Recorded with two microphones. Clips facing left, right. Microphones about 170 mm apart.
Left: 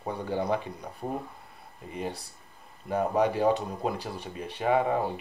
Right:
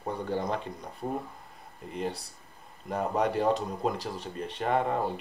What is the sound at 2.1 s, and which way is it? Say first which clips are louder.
Speech: right 1 dB; 65° right (ahead or behind).